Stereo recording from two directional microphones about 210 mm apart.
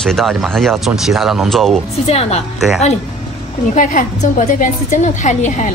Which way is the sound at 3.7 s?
40° left (ahead or behind).